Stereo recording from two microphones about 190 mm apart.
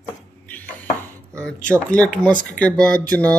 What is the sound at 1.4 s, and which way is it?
Mantra, 5° left (ahead or behind).